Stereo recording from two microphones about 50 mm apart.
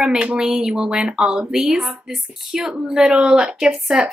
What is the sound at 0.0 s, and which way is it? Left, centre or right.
A woman's voice, centre.